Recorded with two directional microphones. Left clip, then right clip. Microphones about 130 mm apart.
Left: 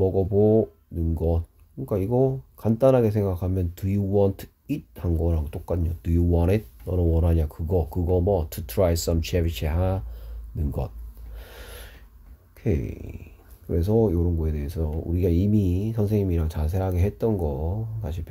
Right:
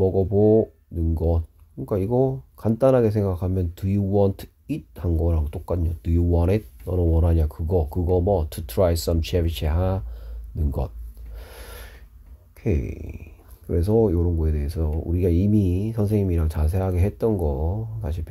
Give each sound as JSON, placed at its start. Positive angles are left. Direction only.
{"t": 0.0, "sound": "speech", "side_deg": -20}
{"t": 11.3, "sound": "a sound", "side_deg": -20}
{"t": 12.5, "sound": "speech", "side_deg": -20}